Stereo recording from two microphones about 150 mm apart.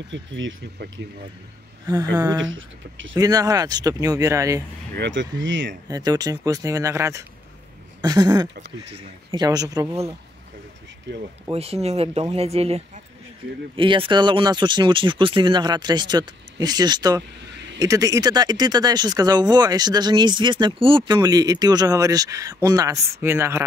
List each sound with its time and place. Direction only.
1.9 s speech: 25° right (ahead or behind)
5.9 s speech: 25° right (ahead or behind)
11.5 s speech: 40° right (ahead or behind); by 23.6 s 15° right (ahead or behind)